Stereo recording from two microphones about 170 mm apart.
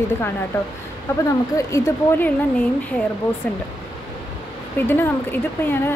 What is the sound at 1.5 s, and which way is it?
Speech, 20° left (ahead or behind).